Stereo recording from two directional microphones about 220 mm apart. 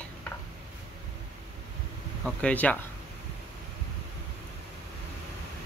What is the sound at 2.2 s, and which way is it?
Speech, 5° left (ahead or behind).